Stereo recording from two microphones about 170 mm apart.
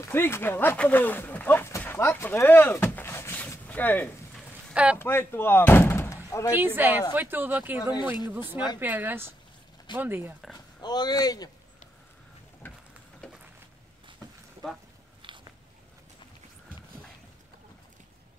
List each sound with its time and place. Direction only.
0.0 s a sound: 15° left (ahead or behind)
4.9 s speech: 15° left (ahead or behind)
6.5 s speech: 10° right (ahead or behind)
10.8 s speech: 25° left (ahead or behind)
12.6 s a sound: 10° left (ahead or behind)
15.2 s biting: 30° right (ahead or behind)